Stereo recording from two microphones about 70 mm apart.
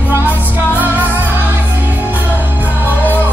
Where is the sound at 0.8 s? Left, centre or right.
Right.